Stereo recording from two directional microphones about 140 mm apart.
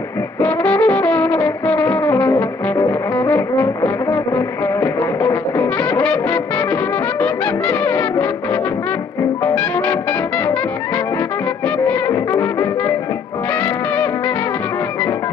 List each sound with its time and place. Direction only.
0.4 s brass instrument: 10° left (ahead or behind)
9.4 s music: 10° left (ahead or behind)
11.6 s music: 10° left (ahead or behind)